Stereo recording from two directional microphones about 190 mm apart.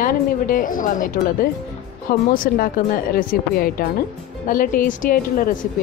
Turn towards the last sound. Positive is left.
turn(degrees=45)  # may be behind; listen again after turning